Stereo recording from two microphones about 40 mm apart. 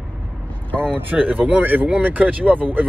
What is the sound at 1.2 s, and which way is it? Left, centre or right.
Speech, right.